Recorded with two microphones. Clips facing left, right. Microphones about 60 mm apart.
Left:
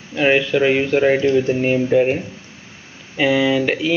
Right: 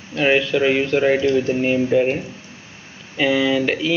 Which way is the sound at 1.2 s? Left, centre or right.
Left.